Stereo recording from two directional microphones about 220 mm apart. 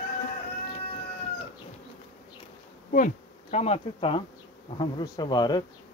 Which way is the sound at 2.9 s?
35° left (ahead or behind).